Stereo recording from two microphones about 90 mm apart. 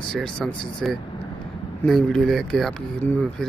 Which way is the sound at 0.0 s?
10° left (ahead or behind).